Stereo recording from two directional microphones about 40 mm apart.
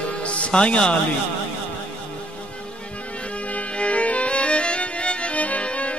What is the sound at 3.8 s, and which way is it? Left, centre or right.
Music, left.